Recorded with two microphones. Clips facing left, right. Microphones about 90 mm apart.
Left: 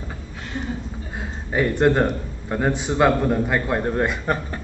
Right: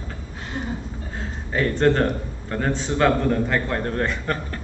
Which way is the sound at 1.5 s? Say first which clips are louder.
Left 1 dB; 15° left (ahead or behind).